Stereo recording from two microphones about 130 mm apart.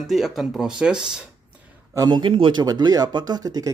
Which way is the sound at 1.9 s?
30° right (ahead or behind).